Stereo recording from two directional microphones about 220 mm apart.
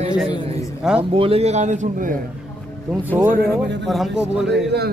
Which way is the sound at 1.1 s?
25° right (ahead or behind).